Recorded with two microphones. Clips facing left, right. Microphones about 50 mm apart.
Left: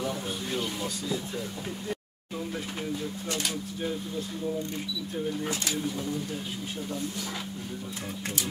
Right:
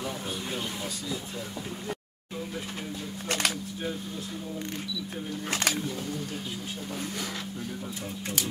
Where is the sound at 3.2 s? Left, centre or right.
Right.